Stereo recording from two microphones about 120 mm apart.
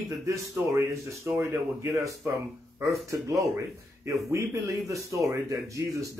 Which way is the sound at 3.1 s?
25° right (ahead or behind).